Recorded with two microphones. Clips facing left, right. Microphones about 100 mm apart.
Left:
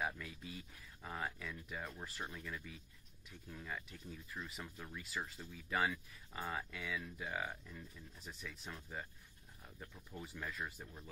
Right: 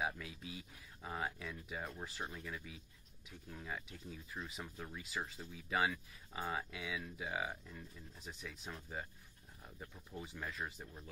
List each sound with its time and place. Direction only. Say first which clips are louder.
0.0 s speech: right 1 dB; 10° right (ahead or behind)
4.7 s speech: right 1 dB; 15° right (ahead or behind)